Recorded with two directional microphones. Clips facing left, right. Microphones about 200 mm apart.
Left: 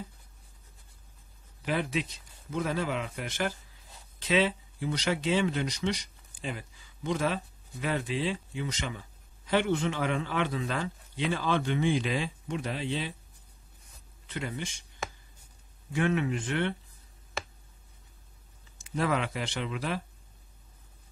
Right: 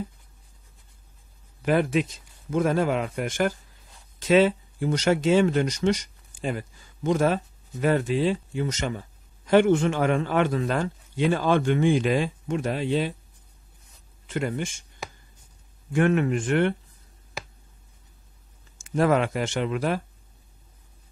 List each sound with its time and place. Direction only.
1.6 s a man's voice: 50° right (ahead or behind)
14.2 s a man's voice: 50° right (ahead or behind)
15.9 s a man's voice: 50° right (ahead or behind)
18.9 s a man's voice: 50° right (ahead or behind)